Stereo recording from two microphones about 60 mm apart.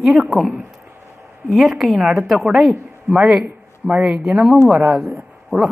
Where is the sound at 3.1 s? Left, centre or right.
Centre.